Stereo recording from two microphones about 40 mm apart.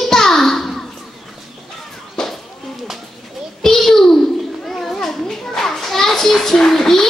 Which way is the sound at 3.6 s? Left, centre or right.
Centre.